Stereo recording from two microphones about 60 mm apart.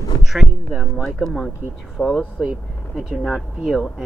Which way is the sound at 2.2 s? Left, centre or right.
Centre.